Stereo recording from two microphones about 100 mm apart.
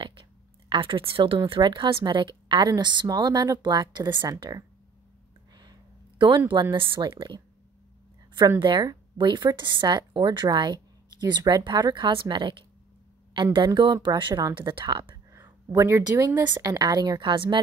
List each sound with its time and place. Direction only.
0.0 s speech: 55° right (ahead or behind); by 4.6 s 40° right (ahead or behind)
5.6 s a sound: 45° right (ahead or behind)
6.5 s speech: 55° right (ahead or behind)
8.5 s speech: 55° right (ahead or behind)
15.3 s speech: 30° right (ahead or behind)
16.4 s speech: 45° right (ahead or behind)